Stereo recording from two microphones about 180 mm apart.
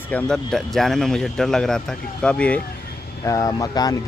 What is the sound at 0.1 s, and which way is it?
Speech, 5° left (ahead or behind).